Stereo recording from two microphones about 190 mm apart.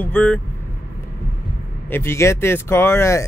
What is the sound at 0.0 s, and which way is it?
Speech, 5° left (ahead or behind).